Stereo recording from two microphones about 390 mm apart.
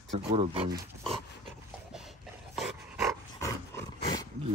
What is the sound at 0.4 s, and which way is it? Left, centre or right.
Speech, centre.